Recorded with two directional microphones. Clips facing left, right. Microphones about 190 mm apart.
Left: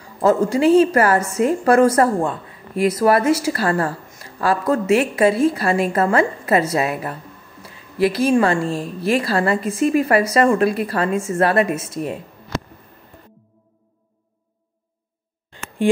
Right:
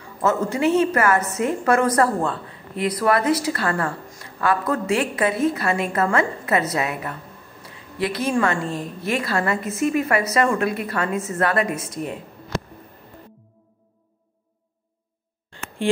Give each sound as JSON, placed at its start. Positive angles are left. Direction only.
{"t": 0.2, "sound": "a woman's voice", "side_deg": 30}
{"t": 8.6, "sound": "a woman's voice", "side_deg": -20}
{"t": 9.2, "sound": "a woman's voice", "side_deg": 30}
{"t": 15.8, "sound": "a sound", "side_deg": 15}